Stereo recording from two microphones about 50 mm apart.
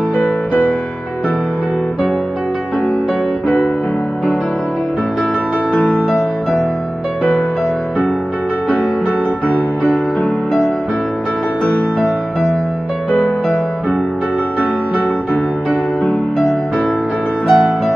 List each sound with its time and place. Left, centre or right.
0.2 s music: left
5.7 s music: centre
17.5 s music: centre